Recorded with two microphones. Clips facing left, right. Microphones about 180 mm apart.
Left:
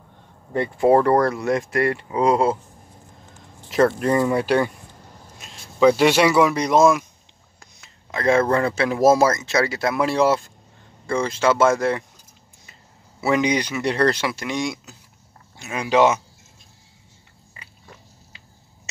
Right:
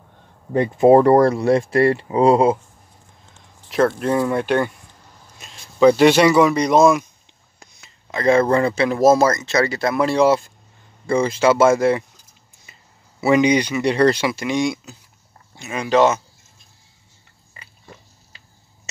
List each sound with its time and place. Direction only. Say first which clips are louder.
0.5 s speech: right 4 dB; 20° right (ahead or behind)
3.3 s speech: even; centre (ahead or behind)
13.2 s speech: right 5 dB; centre (ahead or behind)